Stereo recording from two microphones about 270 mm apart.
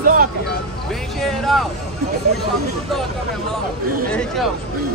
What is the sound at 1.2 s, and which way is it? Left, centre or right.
Speech, centre.